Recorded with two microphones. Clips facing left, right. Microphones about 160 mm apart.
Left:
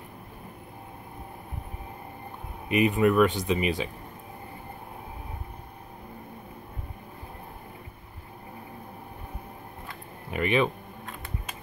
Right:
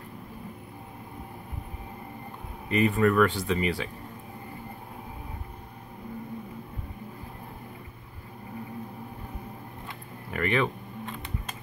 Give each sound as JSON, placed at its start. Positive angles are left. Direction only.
{"t": 2.7, "sound": "speech", "side_deg": 15}
{"t": 10.3, "sound": "speech", "side_deg": 20}